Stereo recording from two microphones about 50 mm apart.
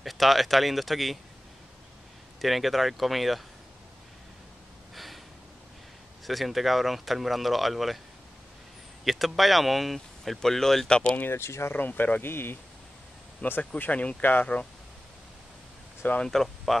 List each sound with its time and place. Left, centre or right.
0.0 s speech: centre
2.4 s speech: centre
4.9 s a sound: centre
6.2 s speech: centre
9.0 s speech: centre
10.9 s speech: centre
11.3 s speech: left
11.7 s speech: left
13.4 s speech: left
16.3 s speech: centre